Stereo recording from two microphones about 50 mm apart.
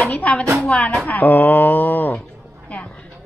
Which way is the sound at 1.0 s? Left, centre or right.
Left.